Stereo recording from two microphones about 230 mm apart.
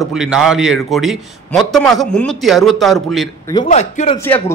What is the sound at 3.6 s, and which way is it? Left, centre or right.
Speech, left.